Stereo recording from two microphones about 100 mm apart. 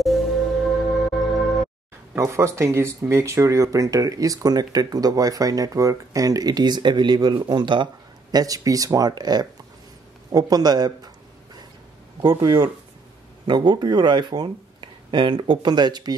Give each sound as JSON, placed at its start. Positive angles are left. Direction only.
{"t": 0.0, "sound": "music", "side_deg": 0}
{"t": 2.1, "sound": "speech", "side_deg": -30}
{"t": 12.2, "sound": "speech", "side_deg": -40}
{"t": 13.5, "sound": "speech", "side_deg": -50}